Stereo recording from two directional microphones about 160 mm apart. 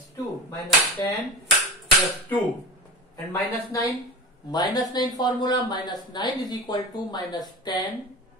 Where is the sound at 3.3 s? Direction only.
20° left (ahead or behind).